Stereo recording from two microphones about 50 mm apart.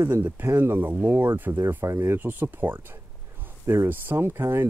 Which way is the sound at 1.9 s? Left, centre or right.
Right.